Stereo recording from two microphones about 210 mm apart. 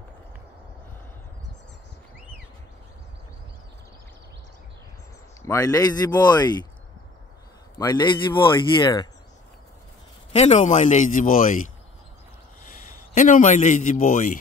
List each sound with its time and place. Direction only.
5.4 s speech: 15° left (ahead or behind)
7.8 s speech: 20° left (ahead or behind)
10.3 s speech: 30° left (ahead or behind)
13.1 s speech: 40° left (ahead or behind)